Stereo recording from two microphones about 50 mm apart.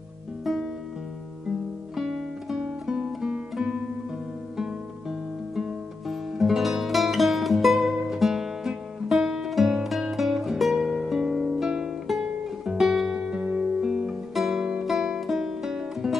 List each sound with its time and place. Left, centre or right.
2.0 s music: centre
2.6 s guitar: centre
6.0 s music: centre
13.1 s music: centre